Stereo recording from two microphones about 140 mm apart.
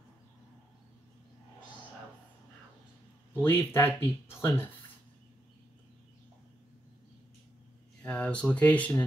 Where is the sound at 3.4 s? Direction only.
15° left (ahead or behind).